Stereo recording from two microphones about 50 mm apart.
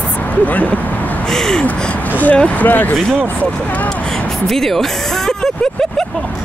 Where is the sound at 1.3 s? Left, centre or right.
Centre.